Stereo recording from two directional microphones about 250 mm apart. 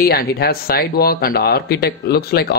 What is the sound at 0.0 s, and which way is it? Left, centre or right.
Speech, left.